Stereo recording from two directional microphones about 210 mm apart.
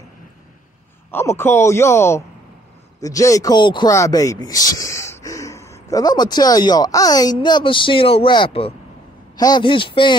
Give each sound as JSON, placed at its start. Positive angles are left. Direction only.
{"t": 1.1, "sound": "speech", "side_deg": 10}